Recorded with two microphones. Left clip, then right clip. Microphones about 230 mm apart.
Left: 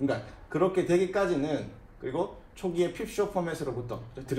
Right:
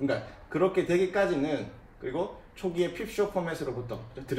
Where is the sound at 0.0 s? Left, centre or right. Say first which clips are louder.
Even; left.